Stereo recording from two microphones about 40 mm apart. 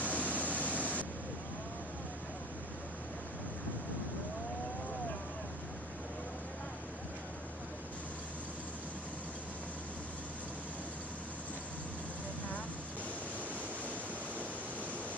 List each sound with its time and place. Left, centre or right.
0.0 s pink noise: left